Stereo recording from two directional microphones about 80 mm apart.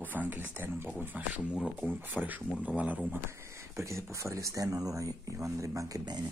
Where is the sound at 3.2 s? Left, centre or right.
Right.